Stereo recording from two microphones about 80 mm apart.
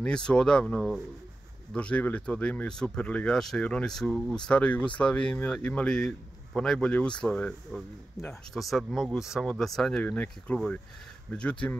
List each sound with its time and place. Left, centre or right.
0.0 s speech: centre
3.3 s speech: centre
4.5 s speech: centre
7.7 s speech: centre
10.0 s speech: centre